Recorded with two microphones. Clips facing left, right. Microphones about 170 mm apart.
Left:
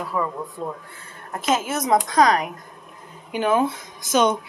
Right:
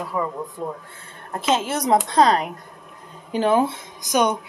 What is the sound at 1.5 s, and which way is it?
Speech, 30° right (ahead or behind).